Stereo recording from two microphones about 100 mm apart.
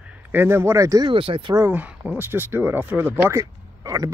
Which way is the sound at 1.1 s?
60° right (ahead or behind).